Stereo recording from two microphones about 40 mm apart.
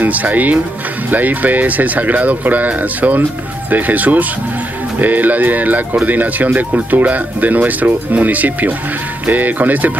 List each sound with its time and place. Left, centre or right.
0.0 s speech: right